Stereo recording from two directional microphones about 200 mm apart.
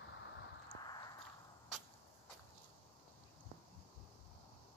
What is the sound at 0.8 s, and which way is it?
Walk, 20° left (ahead or behind).